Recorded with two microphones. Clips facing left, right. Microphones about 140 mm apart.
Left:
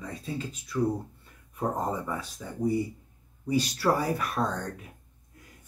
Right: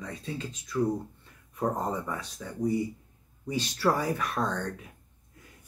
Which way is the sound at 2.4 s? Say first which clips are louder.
Even; 10° left (ahead or behind).